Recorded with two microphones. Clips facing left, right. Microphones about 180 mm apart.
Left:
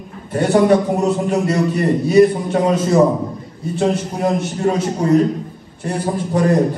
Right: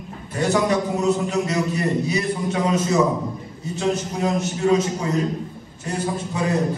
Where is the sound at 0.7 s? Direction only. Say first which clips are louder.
Left 5 dB; 55° left (ahead or behind).